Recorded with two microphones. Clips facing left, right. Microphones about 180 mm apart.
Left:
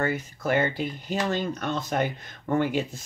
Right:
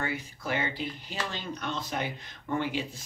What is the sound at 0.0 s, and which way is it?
Speech, 45° left (ahead or behind).